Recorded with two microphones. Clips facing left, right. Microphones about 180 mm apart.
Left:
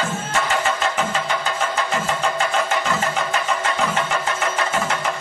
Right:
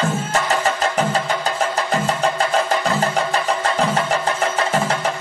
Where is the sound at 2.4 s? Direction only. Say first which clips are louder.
Right 3 dB; 35° right (ahead or behind).